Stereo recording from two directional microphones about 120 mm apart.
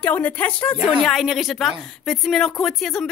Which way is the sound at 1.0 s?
Centre (ahead or behind).